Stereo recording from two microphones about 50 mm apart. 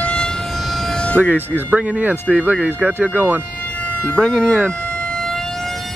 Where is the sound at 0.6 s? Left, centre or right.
Centre.